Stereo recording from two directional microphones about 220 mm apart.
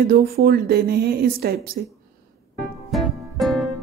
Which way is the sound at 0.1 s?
45° right (ahead or behind).